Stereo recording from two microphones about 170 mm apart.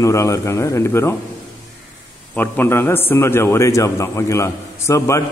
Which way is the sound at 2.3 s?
10° left (ahead or behind).